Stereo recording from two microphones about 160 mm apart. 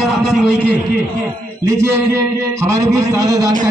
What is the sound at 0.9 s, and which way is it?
A man's voice, 15° right (ahead or behind).